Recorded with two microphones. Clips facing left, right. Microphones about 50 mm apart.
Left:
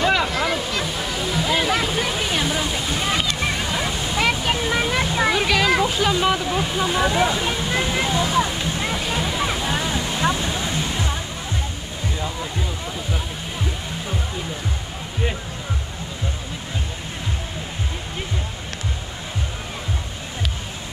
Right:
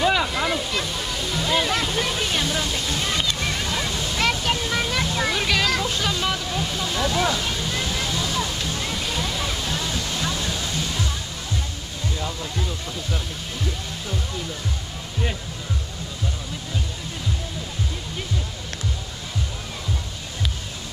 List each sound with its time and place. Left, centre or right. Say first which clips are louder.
0.3 s waterfall: left 2 dB; centre; by 11.1 s left